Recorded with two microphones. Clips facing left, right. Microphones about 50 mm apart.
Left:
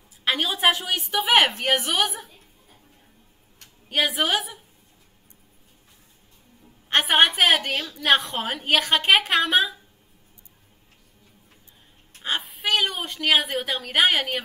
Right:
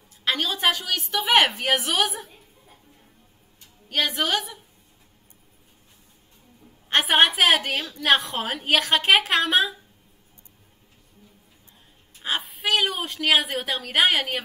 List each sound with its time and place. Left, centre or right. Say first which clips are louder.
0.2 s a woman's voice: left 2 dB; centre
1.2 s a woman's voice: even; centre
3.9 s a woman's voice: left 1 dB; centre
6.9 s a woman's voice: even; centre
12.2 s a woman's voice: even; centre